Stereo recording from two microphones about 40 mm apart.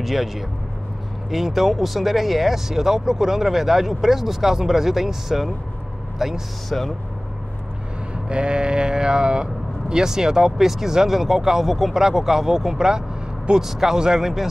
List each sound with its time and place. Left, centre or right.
0.0 s speech: centre
6.7 s speech: centre
8.3 s speech: right
14.2 s speech: centre